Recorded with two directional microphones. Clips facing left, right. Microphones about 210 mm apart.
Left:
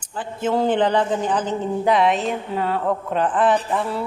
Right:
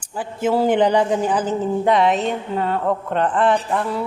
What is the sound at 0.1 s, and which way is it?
A man's voice, 10° right (ahead or behind).